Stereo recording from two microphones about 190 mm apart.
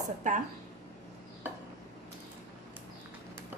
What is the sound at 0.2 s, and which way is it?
Speech, 40° right (ahead or behind).